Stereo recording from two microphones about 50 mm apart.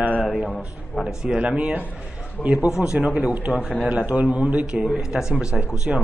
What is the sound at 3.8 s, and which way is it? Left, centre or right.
Speech, right.